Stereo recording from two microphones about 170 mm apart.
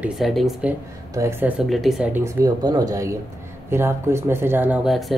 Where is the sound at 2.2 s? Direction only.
20° right (ahead or behind).